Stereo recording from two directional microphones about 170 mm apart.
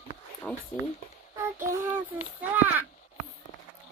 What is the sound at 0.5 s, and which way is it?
Speech, 5° left (ahead or behind).